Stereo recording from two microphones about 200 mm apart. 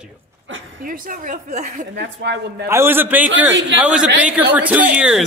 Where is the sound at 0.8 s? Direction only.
40° right (ahead or behind).